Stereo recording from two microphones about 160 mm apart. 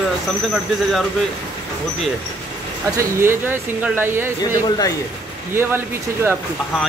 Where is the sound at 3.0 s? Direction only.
15° right (ahead or behind).